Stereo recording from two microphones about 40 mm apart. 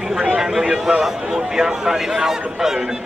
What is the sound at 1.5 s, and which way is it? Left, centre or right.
A man's voice, centre.